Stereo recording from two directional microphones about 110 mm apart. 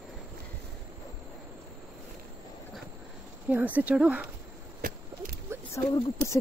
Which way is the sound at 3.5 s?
15° right (ahead or behind).